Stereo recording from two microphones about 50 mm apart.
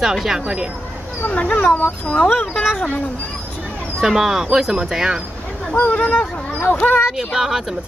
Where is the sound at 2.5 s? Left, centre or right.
Left.